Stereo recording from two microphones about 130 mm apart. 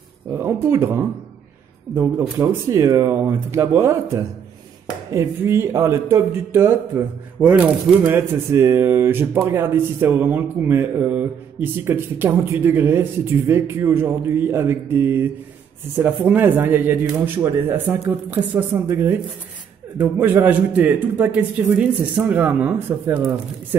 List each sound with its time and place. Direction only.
0.3 s speech: 20° right (ahead or behind)